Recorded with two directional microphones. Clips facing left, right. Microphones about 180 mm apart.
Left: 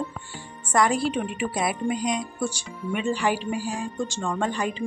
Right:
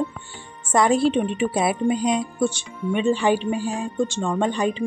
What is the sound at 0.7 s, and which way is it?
A woman's voice, 25° right (ahead or behind).